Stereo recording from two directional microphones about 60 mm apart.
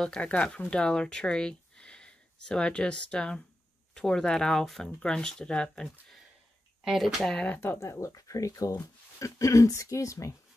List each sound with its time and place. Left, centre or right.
0.2 s speech: left
7.0 s speech: centre
7.2 s speech: centre
7.8 s speech: left